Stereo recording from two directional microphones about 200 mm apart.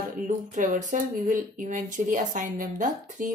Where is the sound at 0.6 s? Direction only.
40° right (ahead or behind).